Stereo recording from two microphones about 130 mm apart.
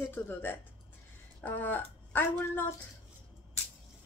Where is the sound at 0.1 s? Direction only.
15° left (ahead or behind).